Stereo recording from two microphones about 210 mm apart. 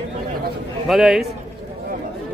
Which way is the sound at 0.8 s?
Centre (ahead or behind).